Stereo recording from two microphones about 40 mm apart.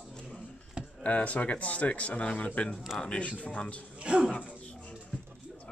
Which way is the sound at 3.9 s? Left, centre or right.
Right.